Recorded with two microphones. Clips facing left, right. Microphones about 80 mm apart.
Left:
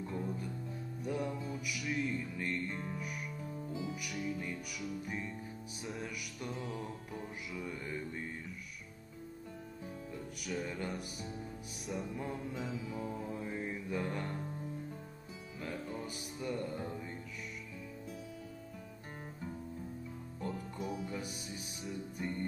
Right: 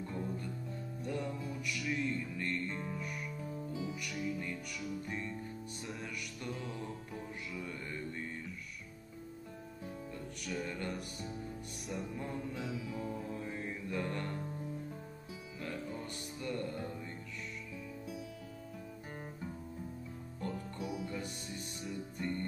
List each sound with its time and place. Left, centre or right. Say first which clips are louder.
0.0 s music: left 1 dB; centre
6.4 s music: left 2 dB; centre
10.1 s music: left 1 dB; centre
15.6 s music: left 1 dB; centre
20.3 s music: even; centre